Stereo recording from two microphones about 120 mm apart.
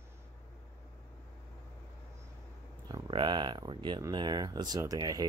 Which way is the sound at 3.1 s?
40° right (ahead or behind).